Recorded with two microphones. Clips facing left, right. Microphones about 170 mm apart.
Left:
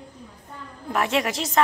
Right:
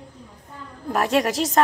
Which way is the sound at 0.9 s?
40° right (ahead or behind).